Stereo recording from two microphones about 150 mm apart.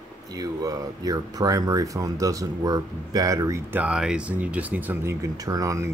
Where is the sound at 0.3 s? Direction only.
25° right (ahead or behind).